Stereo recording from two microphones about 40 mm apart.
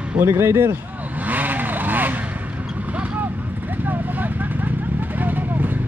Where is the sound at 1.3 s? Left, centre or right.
Right.